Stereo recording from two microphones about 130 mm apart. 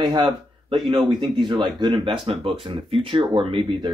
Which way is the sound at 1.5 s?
35° right (ahead or behind).